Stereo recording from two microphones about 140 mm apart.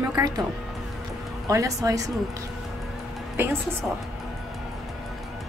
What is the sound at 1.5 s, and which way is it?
Speech, 25° right (ahead or behind).